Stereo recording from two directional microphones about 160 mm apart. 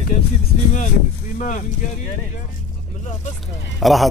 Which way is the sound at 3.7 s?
Centre (ahead or behind).